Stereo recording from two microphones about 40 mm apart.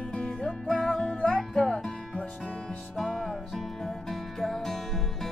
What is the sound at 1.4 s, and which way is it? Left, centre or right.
Music, centre.